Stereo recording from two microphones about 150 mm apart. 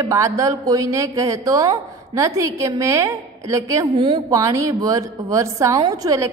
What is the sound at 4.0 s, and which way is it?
A woman's voice, 35° right (ahead or behind).